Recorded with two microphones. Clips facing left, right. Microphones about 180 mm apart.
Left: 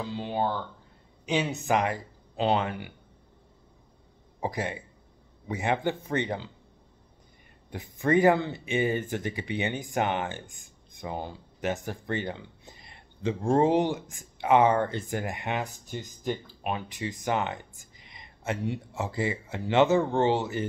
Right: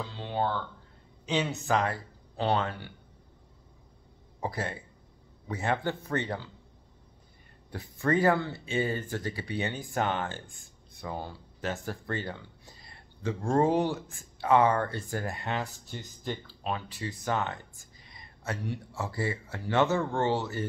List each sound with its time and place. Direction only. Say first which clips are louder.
0.0 s a sound: left 2 dB; 15° left (ahead or behind)
1.2 s speech: left 2 dB; 10° left (ahead or behind)
4.4 s speech: left 3 dB; 15° left (ahead or behind)
7.7 s speech: left 3 dB; 15° left (ahead or behind)